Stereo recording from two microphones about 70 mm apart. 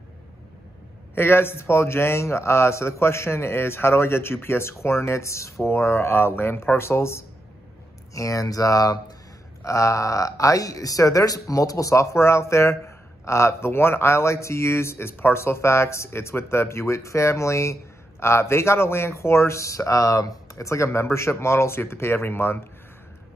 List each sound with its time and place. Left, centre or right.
1.1 s a man's voice: left
8.1 s speech: left
9.6 s a man's voice: left